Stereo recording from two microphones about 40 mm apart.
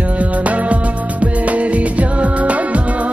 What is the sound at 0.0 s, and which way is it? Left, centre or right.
Music, right.